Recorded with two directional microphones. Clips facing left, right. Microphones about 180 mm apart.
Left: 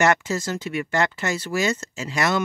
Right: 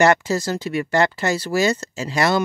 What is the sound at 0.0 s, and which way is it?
Speech, 35° right (ahead or behind).